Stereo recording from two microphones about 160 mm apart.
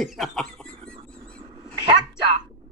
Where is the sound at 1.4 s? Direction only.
35° right (ahead or behind).